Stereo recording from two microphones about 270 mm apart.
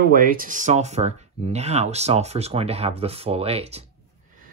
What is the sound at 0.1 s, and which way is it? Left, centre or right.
Speech, right.